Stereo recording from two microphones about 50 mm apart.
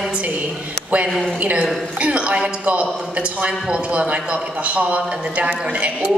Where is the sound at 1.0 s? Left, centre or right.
Centre.